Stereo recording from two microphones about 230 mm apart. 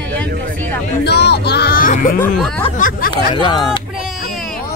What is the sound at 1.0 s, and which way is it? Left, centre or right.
Speech, left.